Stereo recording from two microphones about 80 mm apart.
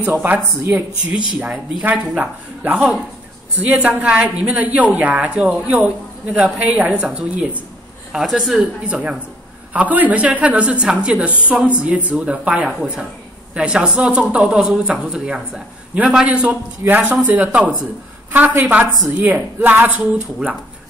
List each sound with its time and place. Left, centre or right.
0.0 s speech: right
4.0 s a man's voice: centre
8.5 s a man's voice: centre